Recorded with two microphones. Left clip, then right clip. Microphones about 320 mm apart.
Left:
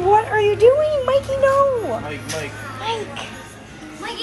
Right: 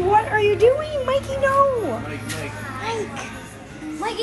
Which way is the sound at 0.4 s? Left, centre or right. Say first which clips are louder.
Left 1 dB; left.